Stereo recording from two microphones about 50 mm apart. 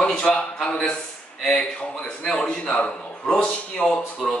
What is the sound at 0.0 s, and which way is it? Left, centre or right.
A man's voice, centre.